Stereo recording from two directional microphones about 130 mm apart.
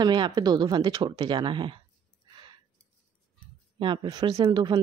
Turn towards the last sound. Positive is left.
turn(degrees=-35)  # may be behind; listen again after turning